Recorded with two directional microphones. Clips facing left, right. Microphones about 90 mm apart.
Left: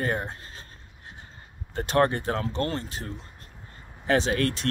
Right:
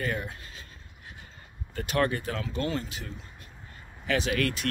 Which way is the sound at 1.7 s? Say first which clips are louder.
Left 4 dB; 30° left (ahead or behind).